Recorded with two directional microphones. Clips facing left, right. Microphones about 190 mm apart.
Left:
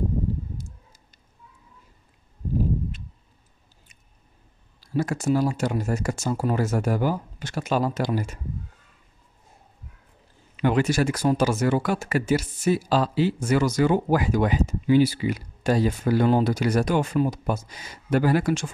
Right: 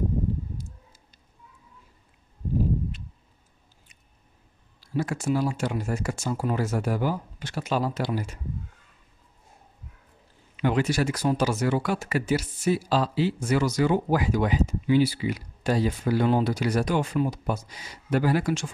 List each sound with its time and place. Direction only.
0.6 s a sound: 45° left (ahead or behind)
4.7 s speech: 40° left (ahead or behind)
10.5 s speech: 50° left (ahead or behind)